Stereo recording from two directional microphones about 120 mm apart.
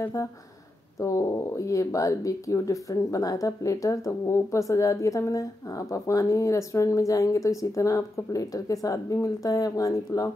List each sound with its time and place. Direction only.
0.0 s speech: 25° left (ahead or behind)